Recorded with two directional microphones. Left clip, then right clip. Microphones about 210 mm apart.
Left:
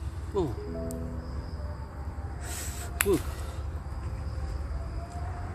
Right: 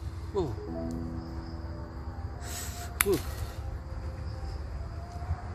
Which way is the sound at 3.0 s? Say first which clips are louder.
Left 1 dB; 30° right (ahead or behind).